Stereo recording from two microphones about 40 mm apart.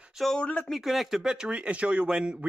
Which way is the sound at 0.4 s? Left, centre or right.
Left.